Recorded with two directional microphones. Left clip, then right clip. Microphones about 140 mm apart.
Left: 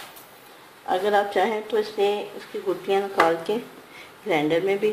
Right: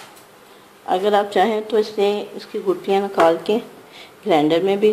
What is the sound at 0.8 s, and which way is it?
Speech, 30° right (ahead or behind).